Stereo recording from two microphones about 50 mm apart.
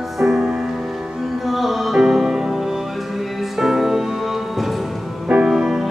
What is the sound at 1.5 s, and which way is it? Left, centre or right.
Music, centre.